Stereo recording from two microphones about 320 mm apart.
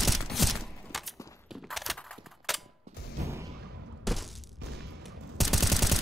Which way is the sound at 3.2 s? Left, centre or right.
Centre.